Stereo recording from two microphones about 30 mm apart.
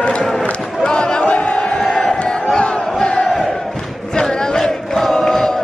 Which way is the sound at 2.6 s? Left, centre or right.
Left.